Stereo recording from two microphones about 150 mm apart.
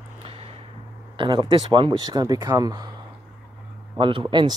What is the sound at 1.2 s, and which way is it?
Speech, 35° right (ahead or behind).